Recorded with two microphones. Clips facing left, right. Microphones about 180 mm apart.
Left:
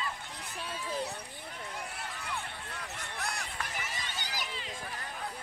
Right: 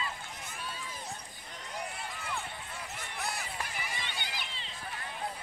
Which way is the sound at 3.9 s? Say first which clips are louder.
Even; 40° left (ahead or behind).